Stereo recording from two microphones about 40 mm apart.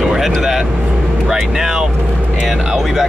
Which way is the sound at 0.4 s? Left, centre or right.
Centre.